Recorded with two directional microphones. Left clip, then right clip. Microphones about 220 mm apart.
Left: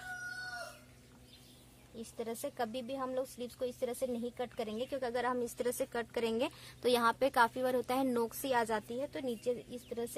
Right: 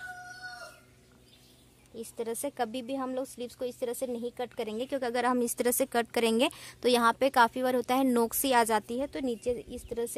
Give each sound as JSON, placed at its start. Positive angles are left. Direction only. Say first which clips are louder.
{"t": 2.0, "sound": "speech", "louder": "right 6 dB", "side_deg": -45}